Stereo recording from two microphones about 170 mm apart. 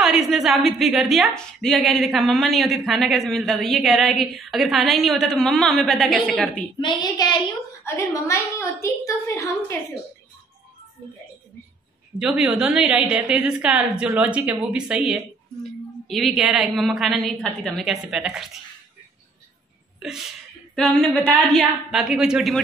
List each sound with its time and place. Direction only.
0.0 s a woman's voice: centre (ahead or behind)
6.8 s child singing: 25° left (ahead or behind)
7.8 s a woman's voice: 15° left (ahead or behind)
12.2 s a woman's voice: 5° right (ahead or behind)
20.0 s a woman's voice: 5° right (ahead or behind)